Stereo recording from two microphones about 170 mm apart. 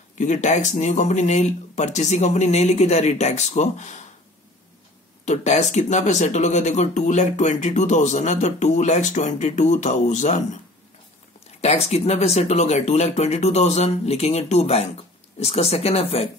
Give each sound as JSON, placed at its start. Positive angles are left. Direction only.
{"t": 0.2, "sound": "speech", "side_deg": 45}
{"t": 5.2, "sound": "speech", "side_deg": 45}
{"t": 11.6, "sound": "speech", "side_deg": 40}